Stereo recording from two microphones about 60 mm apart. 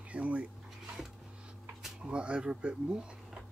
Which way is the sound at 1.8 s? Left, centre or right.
Centre.